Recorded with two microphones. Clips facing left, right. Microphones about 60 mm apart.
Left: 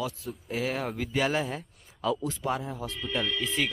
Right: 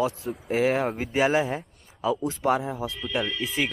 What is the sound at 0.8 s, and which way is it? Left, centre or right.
Speech, right.